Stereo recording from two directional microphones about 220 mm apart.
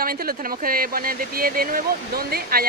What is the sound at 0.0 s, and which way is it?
Speech, 40° right (ahead or behind).